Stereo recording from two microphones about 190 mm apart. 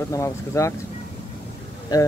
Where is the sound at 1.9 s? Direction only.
20° left (ahead or behind).